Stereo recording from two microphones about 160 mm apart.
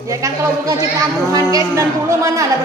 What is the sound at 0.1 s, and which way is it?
Speech, 20° right (ahead or behind).